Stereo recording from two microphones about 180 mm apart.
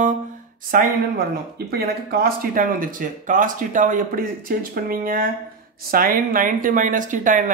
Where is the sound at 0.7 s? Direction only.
50° right (ahead or behind).